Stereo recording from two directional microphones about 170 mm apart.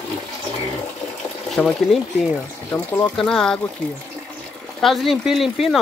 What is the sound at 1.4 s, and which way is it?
Speech, centre (ahead or behind).